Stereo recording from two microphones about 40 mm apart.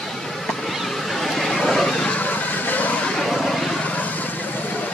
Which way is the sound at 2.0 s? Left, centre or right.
Left.